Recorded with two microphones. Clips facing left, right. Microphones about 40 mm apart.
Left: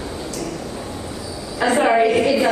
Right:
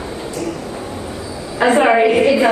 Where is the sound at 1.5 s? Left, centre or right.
Right.